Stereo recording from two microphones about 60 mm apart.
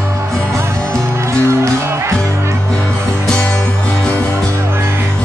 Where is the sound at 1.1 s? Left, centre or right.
Right.